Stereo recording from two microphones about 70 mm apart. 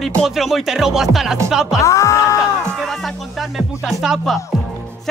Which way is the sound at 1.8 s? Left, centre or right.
Left.